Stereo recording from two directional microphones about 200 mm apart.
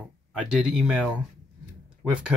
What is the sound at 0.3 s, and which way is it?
Speech, 5° right (ahead or behind).